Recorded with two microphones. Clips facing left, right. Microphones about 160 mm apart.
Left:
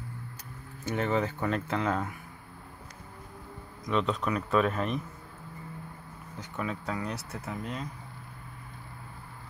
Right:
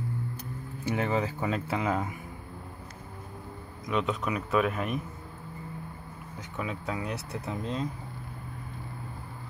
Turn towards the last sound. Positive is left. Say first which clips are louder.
# right 4 dB
turn(degrees=-25)  # may be behind; listen again after turning